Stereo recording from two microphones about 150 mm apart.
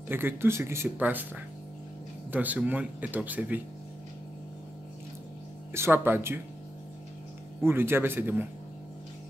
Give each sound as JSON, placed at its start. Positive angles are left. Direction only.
{"t": 0.1, "sound": "speech", "side_deg": -15}
{"t": 5.7, "sound": "speech", "side_deg": -15}
{"t": 7.6, "sound": "speech", "side_deg": -15}